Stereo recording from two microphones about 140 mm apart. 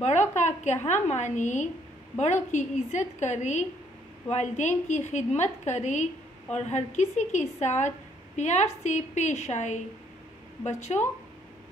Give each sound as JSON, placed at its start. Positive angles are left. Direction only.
{"t": 0.0, "sound": "a woman's voice", "side_deg": 55}